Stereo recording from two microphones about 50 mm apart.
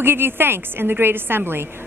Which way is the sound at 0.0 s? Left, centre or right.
Right.